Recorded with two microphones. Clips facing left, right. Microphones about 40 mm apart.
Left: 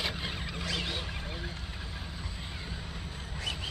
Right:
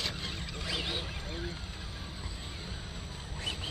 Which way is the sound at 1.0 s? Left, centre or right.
Centre.